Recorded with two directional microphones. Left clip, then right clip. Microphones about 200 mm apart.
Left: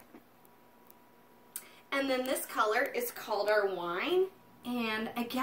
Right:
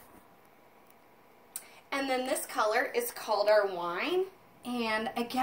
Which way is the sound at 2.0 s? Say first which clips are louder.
Right 1 dB; 15° left (ahead or behind).